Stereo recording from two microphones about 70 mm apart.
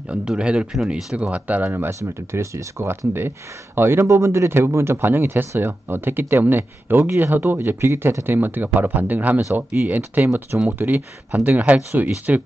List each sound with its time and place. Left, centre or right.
0.1 s speech: centre